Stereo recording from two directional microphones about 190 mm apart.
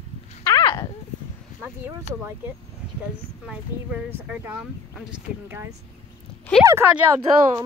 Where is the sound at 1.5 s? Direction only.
40° left (ahead or behind).